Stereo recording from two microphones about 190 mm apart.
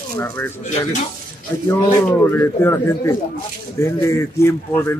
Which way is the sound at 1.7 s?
10° left (ahead or behind).